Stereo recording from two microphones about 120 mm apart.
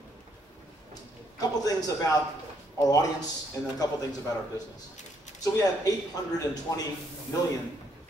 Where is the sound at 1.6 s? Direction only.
30° left (ahead or behind).